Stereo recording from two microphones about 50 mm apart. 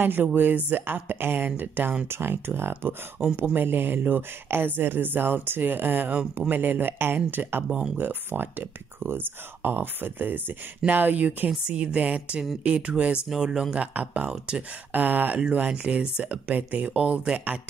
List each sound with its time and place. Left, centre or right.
0.0 s speech: right
2.0 s speech: right
3.2 s speech: centre
3.5 s speech: right
11.6 s speech: right
13.7 s speech: right
14.9 s speech: right
15.5 s speech: right
16.3 s speech: right